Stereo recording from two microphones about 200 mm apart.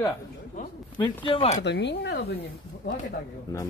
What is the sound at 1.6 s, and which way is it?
Speech, 60° left (ahead or behind).